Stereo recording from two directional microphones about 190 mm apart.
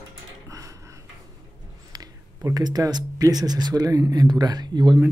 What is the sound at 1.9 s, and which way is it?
Speech, 20° right (ahead or behind).